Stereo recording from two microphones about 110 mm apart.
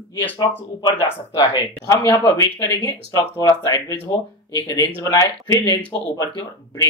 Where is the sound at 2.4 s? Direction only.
30° left (ahead or behind).